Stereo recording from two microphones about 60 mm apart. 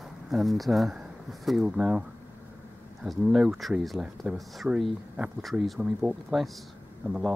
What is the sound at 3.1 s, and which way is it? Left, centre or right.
Speech, centre.